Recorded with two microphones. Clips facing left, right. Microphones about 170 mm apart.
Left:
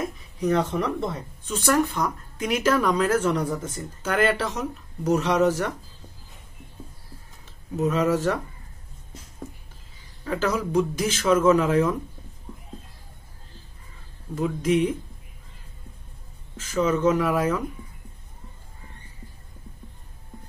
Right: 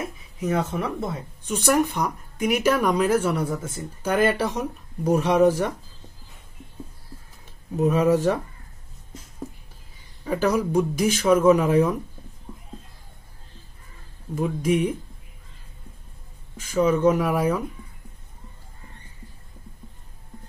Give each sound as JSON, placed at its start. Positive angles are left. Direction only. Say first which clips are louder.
{"t": 0.0, "sound": "speech", "louder": "left 3 dB", "side_deg": -5}
{"t": 7.7, "sound": "speech", "louder": "right 3 dB", "side_deg": -15}
{"t": 10.2, "sound": "speech", "louder": "right 3 dB", "side_deg": -15}
{"t": 14.3, "sound": "speech", "louder": "even", "side_deg": -10}
{"t": 16.7, "sound": "speech", "louder": "right 2 dB", "side_deg": -10}